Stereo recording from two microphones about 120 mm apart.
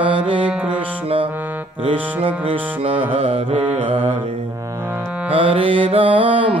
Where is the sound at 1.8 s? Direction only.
50° right (ahead or behind).